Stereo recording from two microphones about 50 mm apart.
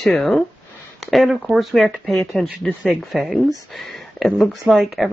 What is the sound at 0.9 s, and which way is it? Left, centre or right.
Speech, centre.